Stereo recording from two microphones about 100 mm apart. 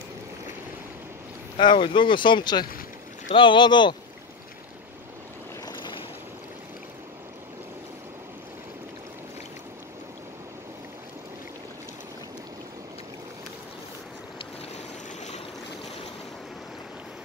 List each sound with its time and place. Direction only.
1.6 s speech: 55° left (ahead or behind)